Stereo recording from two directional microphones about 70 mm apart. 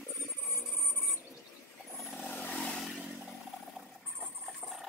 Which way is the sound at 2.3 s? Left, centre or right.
Left.